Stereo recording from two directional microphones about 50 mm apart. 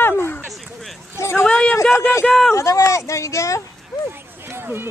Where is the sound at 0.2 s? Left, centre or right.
Left.